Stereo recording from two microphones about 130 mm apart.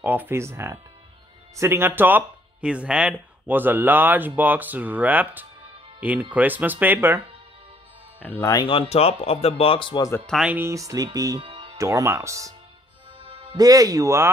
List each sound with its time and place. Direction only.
0.0 s speech: 15° right (ahead or behind)
8.2 s speech: 15° left (ahead or behind)
8.6 s speech: 45° left (ahead or behind)
10.2 s speech: centre (ahead or behind)
10.5 s speech: 20° right (ahead or behind)
11.3 s music: 45° right (ahead or behind)
11.8 s speech: 20° right (ahead or behind)
13.6 s speech: 30° right (ahead or behind)